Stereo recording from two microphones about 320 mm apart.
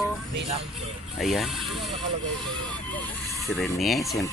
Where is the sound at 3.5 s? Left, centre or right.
Centre.